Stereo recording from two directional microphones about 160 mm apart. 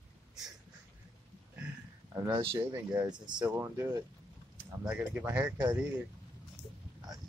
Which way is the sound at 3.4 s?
15° right (ahead or behind).